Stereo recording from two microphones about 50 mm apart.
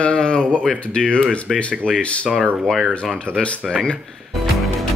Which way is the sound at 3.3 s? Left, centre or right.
Left.